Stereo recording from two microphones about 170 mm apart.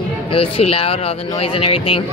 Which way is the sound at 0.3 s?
35° left (ahead or behind).